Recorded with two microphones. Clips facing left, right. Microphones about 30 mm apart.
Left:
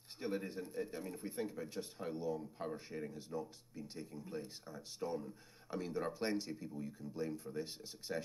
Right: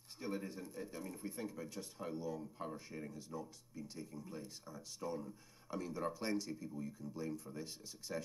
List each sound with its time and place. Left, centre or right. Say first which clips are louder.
0.2 s speech: left 3 dB; left